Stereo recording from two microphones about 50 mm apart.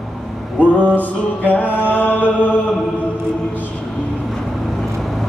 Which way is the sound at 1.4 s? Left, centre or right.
Left.